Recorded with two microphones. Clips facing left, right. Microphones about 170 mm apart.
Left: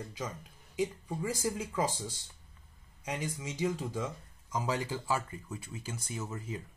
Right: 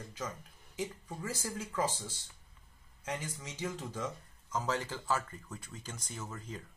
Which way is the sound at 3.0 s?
15° left (ahead or behind).